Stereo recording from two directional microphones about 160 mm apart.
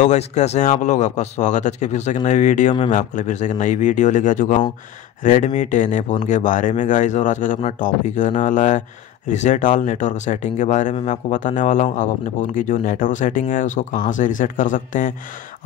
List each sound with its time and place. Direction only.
0.0 s speech: 45° left (ahead or behind)